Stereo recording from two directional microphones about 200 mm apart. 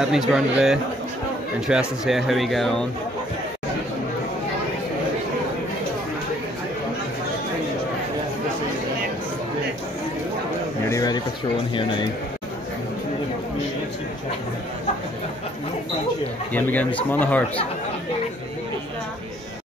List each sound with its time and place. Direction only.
0.3 s speech: centre (ahead or behind)
10.9 s a sound: 20° left (ahead or behind)
11.7 s speech: 25° left (ahead or behind)
16.5 s speech: 10° left (ahead or behind)